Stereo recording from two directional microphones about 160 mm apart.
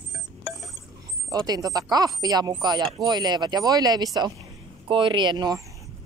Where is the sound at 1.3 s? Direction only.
25° right (ahead or behind).